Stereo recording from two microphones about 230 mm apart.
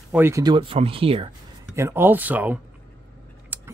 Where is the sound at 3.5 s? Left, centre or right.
Centre.